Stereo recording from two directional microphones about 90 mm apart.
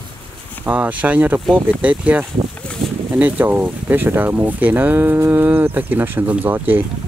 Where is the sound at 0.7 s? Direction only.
15° right (ahead or behind).